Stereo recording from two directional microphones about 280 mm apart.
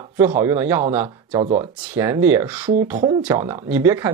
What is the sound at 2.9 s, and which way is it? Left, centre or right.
Speech, centre.